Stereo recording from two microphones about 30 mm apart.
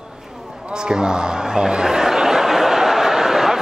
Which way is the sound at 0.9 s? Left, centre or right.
Right.